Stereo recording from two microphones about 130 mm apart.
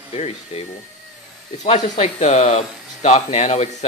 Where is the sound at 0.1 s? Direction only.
50° left (ahead or behind).